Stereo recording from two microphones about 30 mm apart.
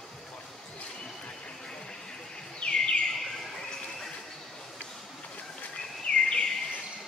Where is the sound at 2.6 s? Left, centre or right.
Left.